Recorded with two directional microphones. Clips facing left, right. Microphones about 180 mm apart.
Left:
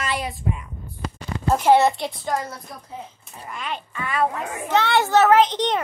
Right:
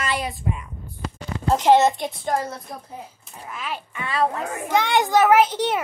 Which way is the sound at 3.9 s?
25° right (ahead or behind).